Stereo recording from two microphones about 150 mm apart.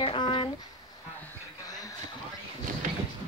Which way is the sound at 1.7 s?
25° left (ahead or behind).